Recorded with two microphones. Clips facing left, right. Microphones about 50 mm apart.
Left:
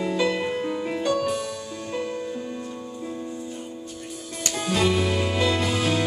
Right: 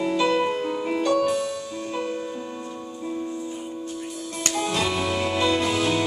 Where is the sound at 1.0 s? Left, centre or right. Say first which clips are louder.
Right 4 dB; centre.